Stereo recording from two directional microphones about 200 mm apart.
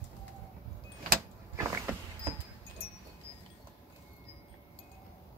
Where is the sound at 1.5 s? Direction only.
15° right (ahead or behind).